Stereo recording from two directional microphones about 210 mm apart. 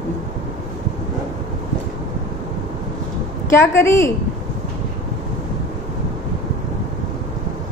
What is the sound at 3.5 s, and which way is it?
Speech, 15° left (ahead or behind).